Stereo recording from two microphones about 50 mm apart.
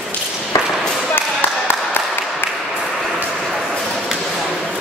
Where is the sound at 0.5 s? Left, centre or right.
Left.